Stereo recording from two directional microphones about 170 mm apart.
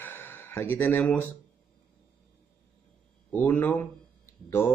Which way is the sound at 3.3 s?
10° left (ahead or behind).